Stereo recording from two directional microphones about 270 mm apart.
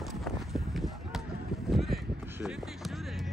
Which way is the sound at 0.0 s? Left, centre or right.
Centre.